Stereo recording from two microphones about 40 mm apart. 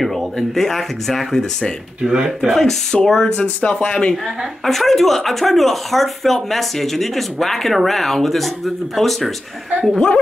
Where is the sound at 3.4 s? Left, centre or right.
Left.